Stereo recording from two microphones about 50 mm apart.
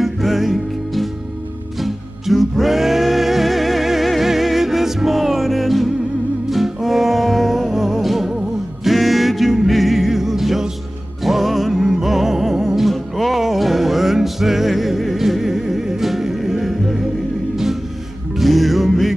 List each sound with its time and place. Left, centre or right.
0.0 s music: centre
18.3 s music: centre